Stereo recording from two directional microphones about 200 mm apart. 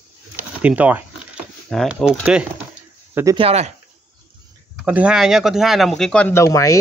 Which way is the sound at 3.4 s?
30° right (ahead or behind).